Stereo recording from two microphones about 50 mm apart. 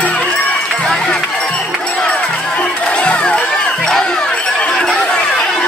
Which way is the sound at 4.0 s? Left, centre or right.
Centre.